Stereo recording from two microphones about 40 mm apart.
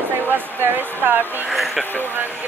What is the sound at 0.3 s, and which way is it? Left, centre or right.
Speech, right.